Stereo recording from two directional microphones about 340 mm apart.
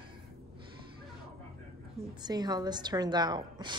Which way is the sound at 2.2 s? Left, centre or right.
Centre.